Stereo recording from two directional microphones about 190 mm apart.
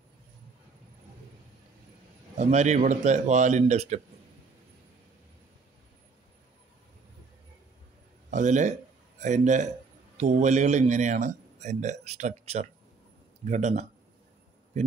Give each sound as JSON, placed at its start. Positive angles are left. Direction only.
{"t": 2.3, "sound": "a man's voice", "side_deg": -35}
{"t": 8.3, "sound": "a man's voice", "side_deg": -40}